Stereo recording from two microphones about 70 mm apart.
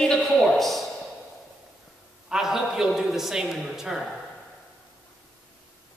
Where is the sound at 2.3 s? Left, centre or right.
Centre.